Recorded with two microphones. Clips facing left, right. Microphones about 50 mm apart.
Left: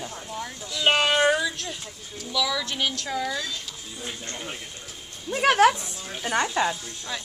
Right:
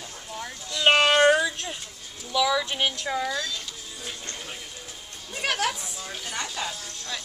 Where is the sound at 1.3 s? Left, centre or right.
Centre.